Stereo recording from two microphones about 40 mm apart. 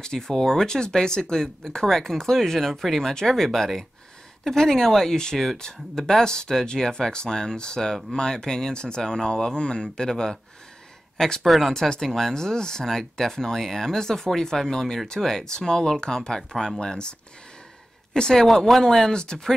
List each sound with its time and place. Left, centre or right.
0.0 s speech: centre
11.4 s speech: centre
11.7 s speech: centre
18.1 s speech: centre